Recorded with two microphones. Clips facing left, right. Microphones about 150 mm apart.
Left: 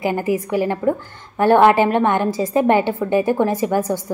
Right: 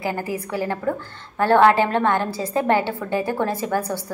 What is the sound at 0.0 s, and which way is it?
A woman's voice, 20° left (ahead or behind).